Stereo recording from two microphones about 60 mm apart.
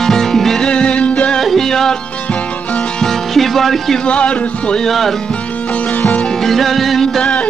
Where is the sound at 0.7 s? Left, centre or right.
Centre.